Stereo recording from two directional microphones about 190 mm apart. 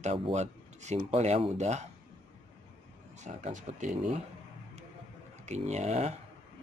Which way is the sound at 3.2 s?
40° right (ahead or behind).